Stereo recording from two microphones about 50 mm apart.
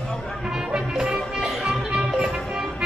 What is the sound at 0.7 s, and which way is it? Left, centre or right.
Music, centre.